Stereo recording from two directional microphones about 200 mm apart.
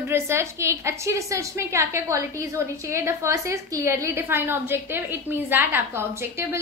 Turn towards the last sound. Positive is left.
turn(degrees=-10)  # may be behind; listen again after turning